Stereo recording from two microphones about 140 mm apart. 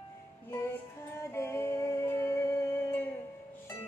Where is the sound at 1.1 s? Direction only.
20° left (ahead or behind).